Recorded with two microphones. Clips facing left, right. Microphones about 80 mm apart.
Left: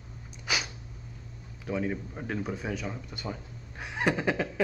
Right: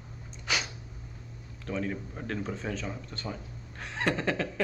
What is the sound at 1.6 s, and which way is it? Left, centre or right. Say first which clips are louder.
Speech: left 2 dB; centre.